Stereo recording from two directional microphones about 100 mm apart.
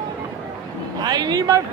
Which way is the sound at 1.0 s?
45° right (ahead or behind).